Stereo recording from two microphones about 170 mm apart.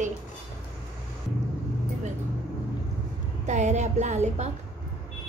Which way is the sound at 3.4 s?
45° right (ahead or behind).